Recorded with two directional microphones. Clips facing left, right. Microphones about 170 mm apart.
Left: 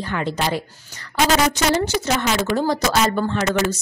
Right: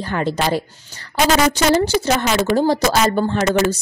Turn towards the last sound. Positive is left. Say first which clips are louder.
# right 4 dB
turn(degrees=-35)  # may be behind; listen again after turning